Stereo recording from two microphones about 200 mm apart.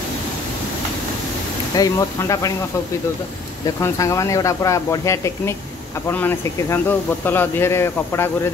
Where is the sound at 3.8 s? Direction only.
15° left (ahead or behind).